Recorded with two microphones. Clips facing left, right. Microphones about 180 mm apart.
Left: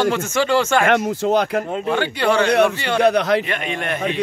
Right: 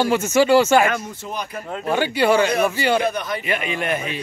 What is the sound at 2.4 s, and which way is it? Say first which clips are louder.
Speech: left 4 dB; 70° left (ahead or behind).